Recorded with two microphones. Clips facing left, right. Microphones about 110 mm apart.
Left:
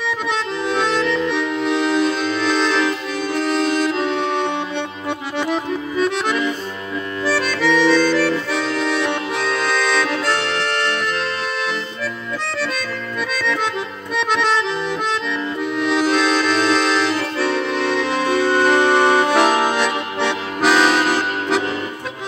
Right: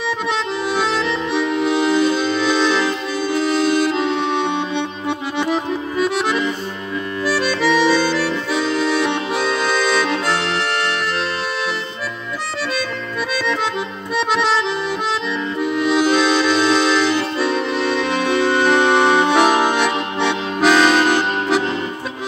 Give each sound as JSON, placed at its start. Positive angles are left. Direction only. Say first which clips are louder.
{"t": 0.3, "sound": "accordion", "louder": "even", "side_deg": -5}
{"t": 1.0, "sound": "music", "louder": "left 2 dB", "side_deg": -20}
{"t": 1.3, "sound": "music", "louder": "right 2 dB", "side_deg": -10}
{"t": 3.3, "sound": "accordion", "louder": "right 2 dB", "side_deg": -5}
{"t": 14.1, "sound": "accordion", "louder": "right 1 dB", "side_deg": -5}
{"t": 15.6, "sound": "accordion", "louder": "right 2 dB", "side_deg": -5}